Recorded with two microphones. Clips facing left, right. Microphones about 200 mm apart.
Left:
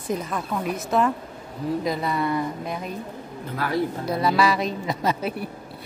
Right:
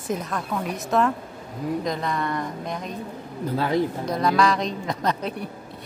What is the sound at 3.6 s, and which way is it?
Speech, 20° right (ahead or behind).